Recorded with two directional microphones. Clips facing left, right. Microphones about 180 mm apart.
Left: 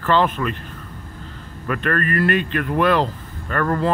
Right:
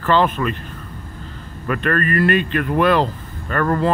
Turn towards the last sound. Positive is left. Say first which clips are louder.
# right 2 dB
turn(degrees=-25)  # may be behind; listen again after turning